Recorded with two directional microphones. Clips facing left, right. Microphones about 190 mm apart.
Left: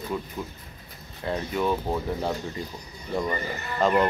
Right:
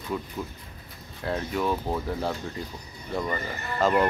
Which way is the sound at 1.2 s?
Centre (ahead or behind).